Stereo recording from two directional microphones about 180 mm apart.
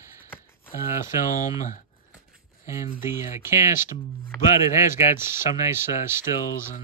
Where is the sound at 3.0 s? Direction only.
15° right (ahead or behind).